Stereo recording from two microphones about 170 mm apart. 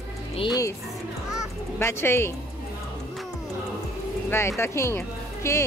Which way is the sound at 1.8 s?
15° left (ahead or behind).